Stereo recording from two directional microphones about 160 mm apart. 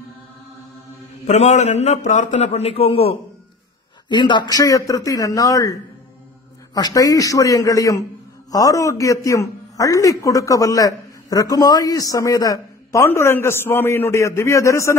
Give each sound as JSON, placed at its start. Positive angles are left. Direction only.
{"t": 1.2, "sound": "a man's voice", "side_deg": 45}